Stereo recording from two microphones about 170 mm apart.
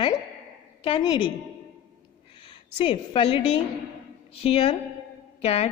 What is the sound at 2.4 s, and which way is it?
A woman's voice, 30° left (ahead or behind).